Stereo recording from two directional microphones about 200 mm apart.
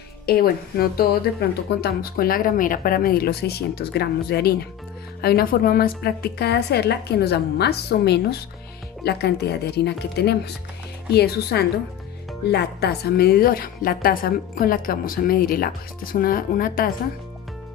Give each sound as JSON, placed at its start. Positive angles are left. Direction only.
{"t": 0.3, "sound": "a woman's voice", "side_deg": 50}